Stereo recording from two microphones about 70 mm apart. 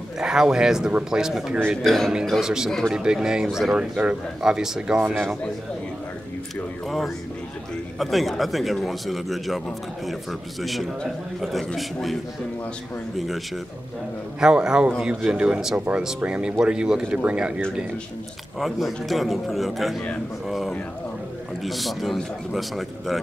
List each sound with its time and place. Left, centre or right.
0.2 s speech: centre
1.9 s speech: centre
2.4 s speech: centre
3.7 s speech: centre
6.5 s speech: centre
14.4 s speech: centre
18.6 s speech: centre